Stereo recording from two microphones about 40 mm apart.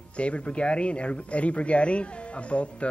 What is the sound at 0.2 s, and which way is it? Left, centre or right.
Speech, left.